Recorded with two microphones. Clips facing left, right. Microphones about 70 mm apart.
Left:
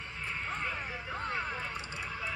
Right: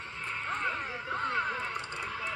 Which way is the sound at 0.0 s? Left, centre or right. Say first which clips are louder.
Right 2 dB; right.